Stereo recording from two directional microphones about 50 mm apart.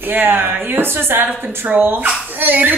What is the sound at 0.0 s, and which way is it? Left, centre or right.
A woman's voice, right.